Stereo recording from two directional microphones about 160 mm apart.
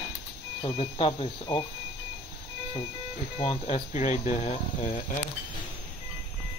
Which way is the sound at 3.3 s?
40° left (ahead or behind).